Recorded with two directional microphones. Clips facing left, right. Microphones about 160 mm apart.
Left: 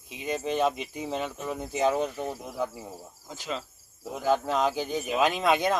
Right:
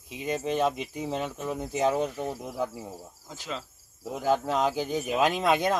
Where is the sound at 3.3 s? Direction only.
15° left (ahead or behind).